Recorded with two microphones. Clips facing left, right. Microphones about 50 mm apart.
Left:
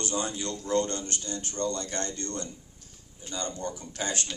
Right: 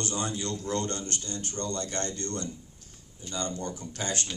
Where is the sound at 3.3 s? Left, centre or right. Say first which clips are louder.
Right 1 dB; centre.